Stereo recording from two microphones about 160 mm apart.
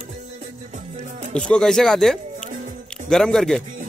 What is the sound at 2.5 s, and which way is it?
Music, 50° right (ahead or behind).